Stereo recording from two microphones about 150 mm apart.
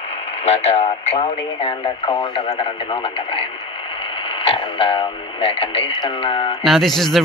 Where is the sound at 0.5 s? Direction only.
45° left (ahead or behind).